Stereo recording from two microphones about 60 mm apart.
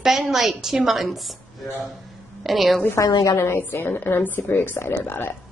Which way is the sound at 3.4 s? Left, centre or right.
Left.